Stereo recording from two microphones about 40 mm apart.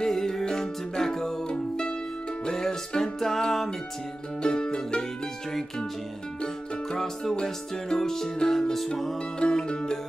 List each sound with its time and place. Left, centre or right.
0.0 s music: centre
6.4 s music: centre
9.4 s music: left